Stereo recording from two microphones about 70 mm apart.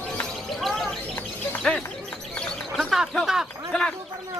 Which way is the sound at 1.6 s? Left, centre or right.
Centre.